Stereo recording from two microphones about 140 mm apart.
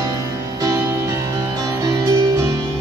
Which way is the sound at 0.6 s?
25° right (ahead or behind).